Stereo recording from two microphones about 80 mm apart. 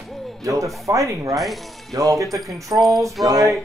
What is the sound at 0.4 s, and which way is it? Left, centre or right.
Speech, right.